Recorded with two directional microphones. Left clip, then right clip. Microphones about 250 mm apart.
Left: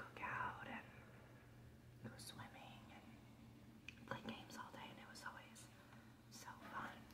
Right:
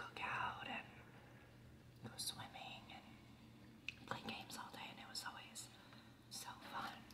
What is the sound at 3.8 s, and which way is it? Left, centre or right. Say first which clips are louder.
Whispering: right 4 dB; centre.